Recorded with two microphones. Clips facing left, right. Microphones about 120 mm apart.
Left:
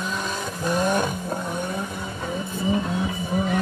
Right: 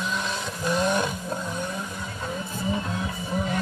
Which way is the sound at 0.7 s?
45° left (ahead or behind).